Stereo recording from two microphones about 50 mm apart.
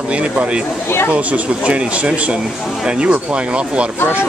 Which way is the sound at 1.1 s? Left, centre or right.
Right.